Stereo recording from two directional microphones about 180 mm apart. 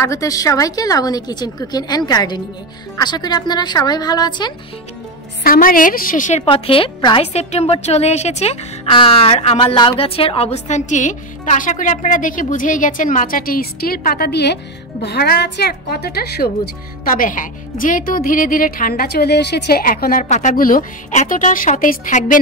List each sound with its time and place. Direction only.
0.0 s a woman's voice: 20° left (ahead or behind)
5.4 s a woman's voice: 50° left (ahead or behind)
6.4 s a woman's voice: 30° left (ahead or behind); by 22.4 s 50° left (ahead or behind)